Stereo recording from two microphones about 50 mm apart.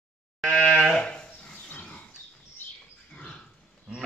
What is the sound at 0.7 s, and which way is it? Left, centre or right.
Goat, centre.